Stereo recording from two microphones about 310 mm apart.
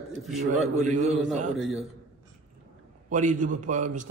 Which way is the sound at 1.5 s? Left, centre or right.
Centre.